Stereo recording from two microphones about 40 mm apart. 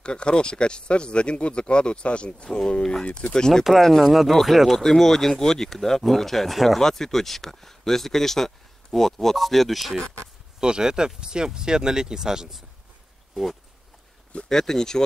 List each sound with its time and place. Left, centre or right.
0.0 s speech: left; by 9.9 s centre
10.6 s speech: centre
13.3 s speech: centre
14.5 s speech: centre